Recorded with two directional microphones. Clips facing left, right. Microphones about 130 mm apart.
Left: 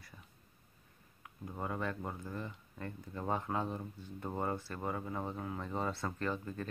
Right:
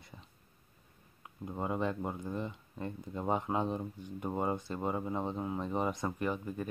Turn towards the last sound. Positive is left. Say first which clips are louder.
# right 3 dB
turn(degrees=-15)  # may be behind; listen again after turning